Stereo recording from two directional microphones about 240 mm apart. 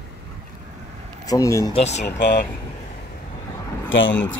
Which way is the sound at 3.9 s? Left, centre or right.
Left.